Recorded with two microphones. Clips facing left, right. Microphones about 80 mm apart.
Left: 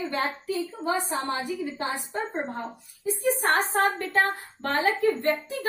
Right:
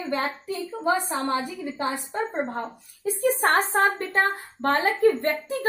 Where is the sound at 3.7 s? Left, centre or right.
Right.